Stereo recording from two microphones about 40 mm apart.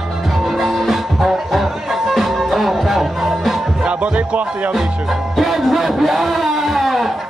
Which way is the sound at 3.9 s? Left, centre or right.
Right.